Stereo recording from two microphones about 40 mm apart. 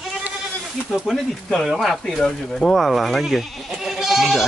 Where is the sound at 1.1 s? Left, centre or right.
Centre.